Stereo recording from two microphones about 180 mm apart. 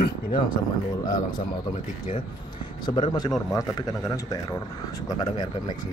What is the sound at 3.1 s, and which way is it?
Speech, 20° left (ahead or behind).